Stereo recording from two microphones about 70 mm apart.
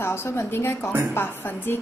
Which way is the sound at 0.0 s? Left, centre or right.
Left.